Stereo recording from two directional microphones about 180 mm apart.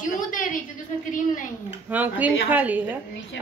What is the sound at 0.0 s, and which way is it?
Speech, 45° left (ahead or behind).